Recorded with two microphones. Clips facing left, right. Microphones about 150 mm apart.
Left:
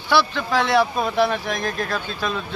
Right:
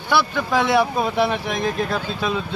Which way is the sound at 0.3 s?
15° right (ahead or behind).